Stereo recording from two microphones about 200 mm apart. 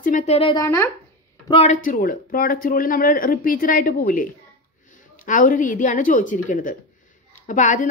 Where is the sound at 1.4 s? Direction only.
30° left (ahead or behind).